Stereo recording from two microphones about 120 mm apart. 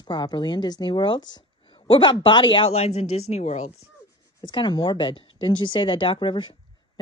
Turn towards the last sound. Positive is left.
turn(degrees=45)  # may be behind; listen again after turning